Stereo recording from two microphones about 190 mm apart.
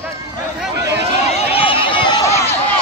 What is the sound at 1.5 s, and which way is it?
Run, 30° left (ahead or behind).